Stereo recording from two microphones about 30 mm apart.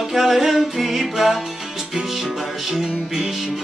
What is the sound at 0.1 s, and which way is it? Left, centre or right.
Music, centre.